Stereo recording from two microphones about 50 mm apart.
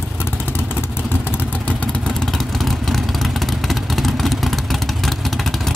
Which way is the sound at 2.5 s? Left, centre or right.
Centre.